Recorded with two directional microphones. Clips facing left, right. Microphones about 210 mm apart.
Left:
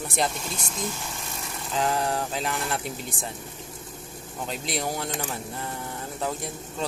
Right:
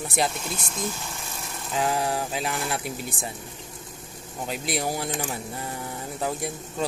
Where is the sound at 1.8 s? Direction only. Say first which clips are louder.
Even; 10° right (ahead or behind).